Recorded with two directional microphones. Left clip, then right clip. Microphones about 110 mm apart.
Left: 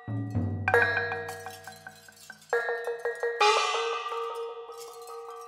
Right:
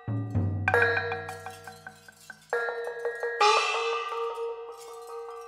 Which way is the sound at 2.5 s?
20° left (ahead or behind).